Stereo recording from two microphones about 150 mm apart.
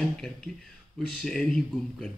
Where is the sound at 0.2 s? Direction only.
Centre (ahead or behind).